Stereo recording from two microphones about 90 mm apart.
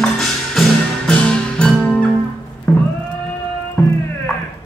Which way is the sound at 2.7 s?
15° left (ahead or behind).